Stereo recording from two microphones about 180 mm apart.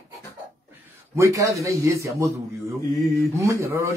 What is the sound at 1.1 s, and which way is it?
Speech, 15° right (ahead or behind).